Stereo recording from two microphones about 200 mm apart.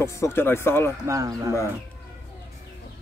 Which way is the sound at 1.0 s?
15° right (ahead or behind).